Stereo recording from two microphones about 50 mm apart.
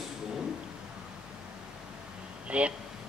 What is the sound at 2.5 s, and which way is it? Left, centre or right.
Speech, right.